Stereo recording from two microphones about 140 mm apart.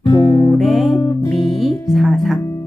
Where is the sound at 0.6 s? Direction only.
Centre (ahead or behind).